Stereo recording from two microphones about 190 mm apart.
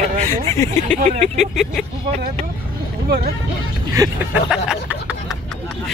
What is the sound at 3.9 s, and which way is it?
Speech, 15° right (ahead or behind).